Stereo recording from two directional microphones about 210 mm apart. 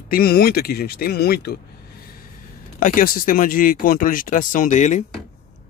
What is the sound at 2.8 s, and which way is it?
Speech, 40° left (ahead or behind).